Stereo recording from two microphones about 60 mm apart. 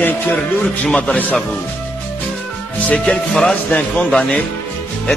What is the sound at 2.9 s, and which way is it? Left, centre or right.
Speech, centre.